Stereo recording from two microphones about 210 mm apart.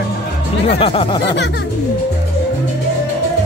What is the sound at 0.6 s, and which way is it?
Speech, 30° left (ahead or behind).